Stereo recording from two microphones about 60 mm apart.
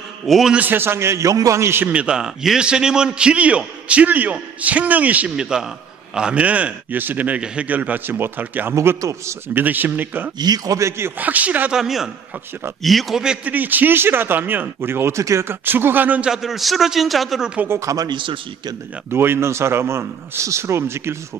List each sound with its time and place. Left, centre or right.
0.6 s speech: right
1.6 s speech: right
1.9 s a man's voice: centre
5.3 s a man's voice: centre; by 8.7 s right
9.0 s speech: right
9.5 s speech: right
10.5 s a man's voice: right
10.8 s speech: right
11.1 s a man's voice: right
11.7 s a man's voice: centre
13.5 s speech: right
16.2 s a man's voice: centre
17.6 s speech: right
19.0 s speech: right